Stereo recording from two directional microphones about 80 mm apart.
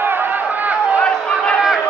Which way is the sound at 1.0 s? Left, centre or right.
Centre.